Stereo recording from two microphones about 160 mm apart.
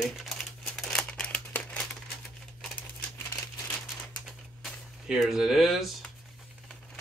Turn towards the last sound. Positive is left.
turn(degrees=0)  # may be behind; listen again after turning